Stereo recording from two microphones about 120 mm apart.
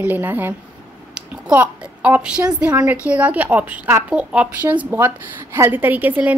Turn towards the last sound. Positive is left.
turn(degrees=-15)  # may be behind; listen again after turning